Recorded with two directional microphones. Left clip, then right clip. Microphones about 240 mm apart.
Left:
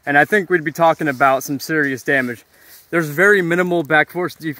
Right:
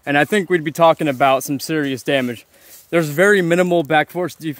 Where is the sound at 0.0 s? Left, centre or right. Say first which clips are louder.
Left 2 dB; right.